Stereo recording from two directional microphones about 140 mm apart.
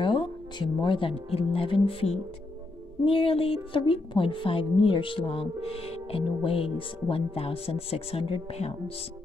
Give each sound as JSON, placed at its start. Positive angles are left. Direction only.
{"t": 0.0, "sound": "a woman's voice", "side_deg": 35}